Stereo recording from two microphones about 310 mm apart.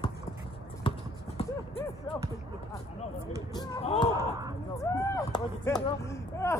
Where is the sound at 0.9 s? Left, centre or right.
Centre.